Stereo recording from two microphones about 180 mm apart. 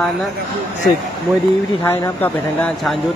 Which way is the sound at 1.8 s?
10° left (ahead or behind).